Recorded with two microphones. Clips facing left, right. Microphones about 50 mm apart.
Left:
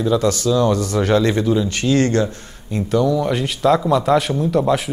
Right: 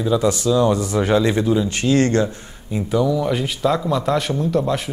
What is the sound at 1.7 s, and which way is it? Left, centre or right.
Speech, right.